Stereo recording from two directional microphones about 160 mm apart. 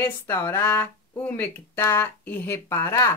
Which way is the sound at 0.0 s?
15° left (ahead or behind).